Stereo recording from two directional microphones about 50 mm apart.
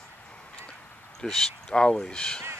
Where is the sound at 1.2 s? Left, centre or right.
Centre.